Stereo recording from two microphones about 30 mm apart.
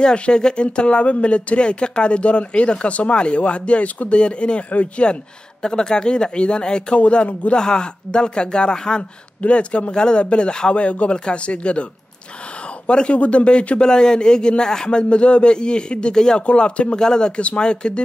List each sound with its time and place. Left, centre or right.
0.0 s speech: left
4.1 s speech: left
4.6 s speech: left
5.6 s speech: left
9.4 s speech: left
10.7 s speech: left
13.8 s speech: left
17.0 s speech: left